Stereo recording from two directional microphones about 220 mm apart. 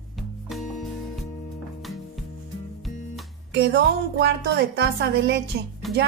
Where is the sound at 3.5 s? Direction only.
50° right (ahead or behind).